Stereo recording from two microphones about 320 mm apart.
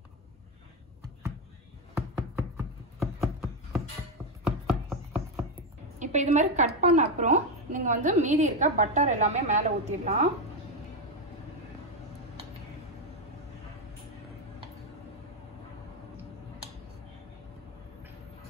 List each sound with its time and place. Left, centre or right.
2.5 s a sound: centre
4.6 s chopping: centre
5.9 s a woman's voice: right